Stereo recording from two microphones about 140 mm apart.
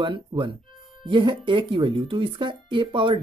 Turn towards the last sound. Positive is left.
turn(degrees=-35)  # may be behind; listen again after turning